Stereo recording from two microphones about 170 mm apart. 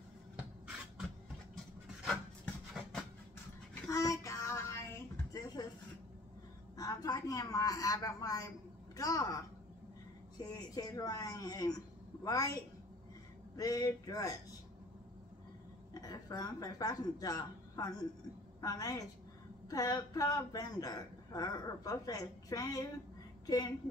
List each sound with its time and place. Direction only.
2.0 s rub: 5° left (ahead or behind)
3.8 s a sound: 20° left (ahead or behind)
6.8 s a sound: 20° left (ahead or behind)
8.9 s a woman's voice: 20° left (ahead or behind)
10.4 s a woman's voice: 20° left (ahead or behind)
13.6 s a woman's voice: 20° left (ahead or behind)
15.9 s a woman's voice: 20° left (ahead or behind)